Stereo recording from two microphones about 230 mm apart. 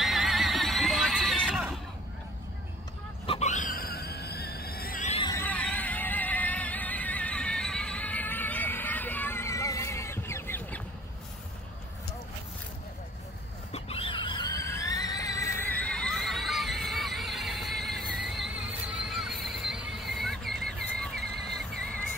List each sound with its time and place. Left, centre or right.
0.0 s neigh: centre
3.3 s a sound: left
5.2 s music: centre
13.7 s neigh: left; by 20.5 s centre